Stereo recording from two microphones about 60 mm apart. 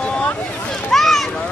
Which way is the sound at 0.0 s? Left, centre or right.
Left.